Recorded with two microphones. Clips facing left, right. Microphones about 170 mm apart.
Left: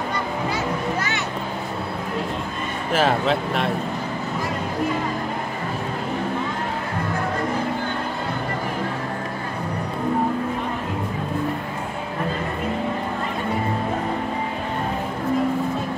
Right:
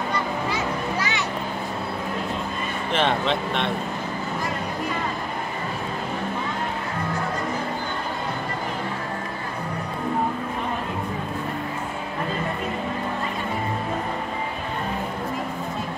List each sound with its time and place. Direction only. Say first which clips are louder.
2.9 s speech: left 3 dB; 5° left (ahead or behind)